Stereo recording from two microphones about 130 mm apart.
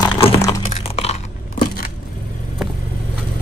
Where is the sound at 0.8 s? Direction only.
50° left (ahead or behind).